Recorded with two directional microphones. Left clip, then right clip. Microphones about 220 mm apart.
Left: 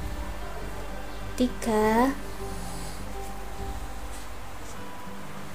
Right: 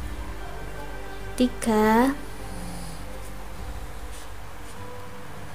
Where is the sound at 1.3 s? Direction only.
20° right (ahead or behind).